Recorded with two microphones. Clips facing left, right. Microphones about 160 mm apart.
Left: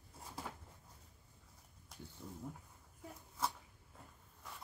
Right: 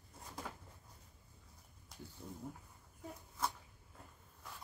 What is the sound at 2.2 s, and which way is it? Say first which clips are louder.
Speech: right 1 dB; 25° right (ahead or behind).